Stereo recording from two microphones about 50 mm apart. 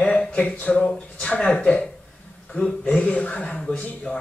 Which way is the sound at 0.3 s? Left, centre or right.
Left.